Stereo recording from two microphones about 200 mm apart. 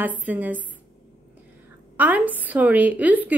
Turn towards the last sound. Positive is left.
turn(degrees=-10)  # may be behind; listen again after turning